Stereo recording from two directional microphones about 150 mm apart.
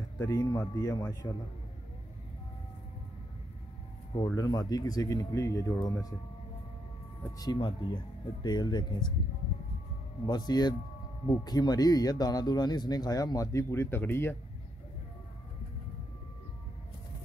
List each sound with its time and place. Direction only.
0.2 s speech: 20° left (ahead or behind)
4.4 s speech: 25° left (ahead or behind)
7.3 s speech: 30° left (ahead or behind)
10.2 s speech: 30° left (ahead or behind)